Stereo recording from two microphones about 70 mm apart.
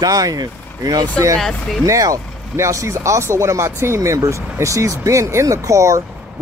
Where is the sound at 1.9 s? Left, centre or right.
Right.